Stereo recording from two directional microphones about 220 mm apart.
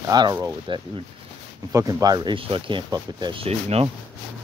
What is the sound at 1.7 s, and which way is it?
Speech, 15° right (ahead or behind).